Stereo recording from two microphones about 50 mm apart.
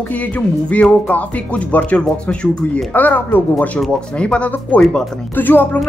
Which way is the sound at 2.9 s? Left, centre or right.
Left.